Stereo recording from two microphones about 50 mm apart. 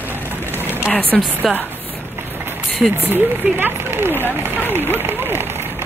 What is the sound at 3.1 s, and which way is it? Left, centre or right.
Speech, right.